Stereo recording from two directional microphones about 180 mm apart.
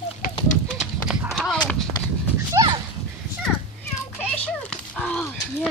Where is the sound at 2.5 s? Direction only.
25° right (ahead or behind).